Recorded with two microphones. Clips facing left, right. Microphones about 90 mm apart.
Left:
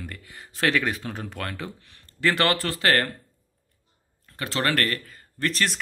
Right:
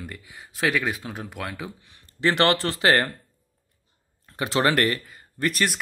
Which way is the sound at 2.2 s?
20° right (ahead or behind).